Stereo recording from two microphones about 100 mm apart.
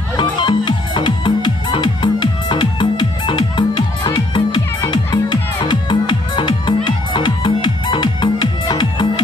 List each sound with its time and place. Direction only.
0.2 s music: 50° left (ahead or behind)